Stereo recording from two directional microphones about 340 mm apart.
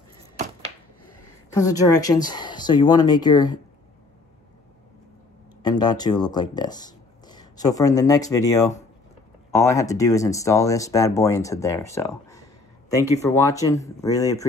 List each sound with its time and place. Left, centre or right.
1.5 s speech: centre
5.6 s speech: centre